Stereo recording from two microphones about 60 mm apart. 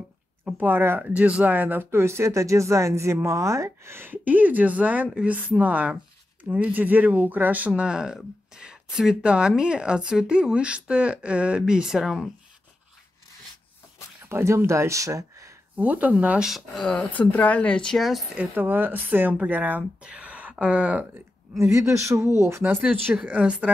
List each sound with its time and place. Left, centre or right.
0.5 s speech: right
1.0 s a woman's voice: right; by 12.3 s centre
14.3 s speech: right
15.7 s speech: right
16.3 s speech: centre
16.7 s speech: centre
17.9 s speech: centre
18.5 s speech: right
20.0 s a sound: centre
21.5 s speech: right
23.1 s speech: right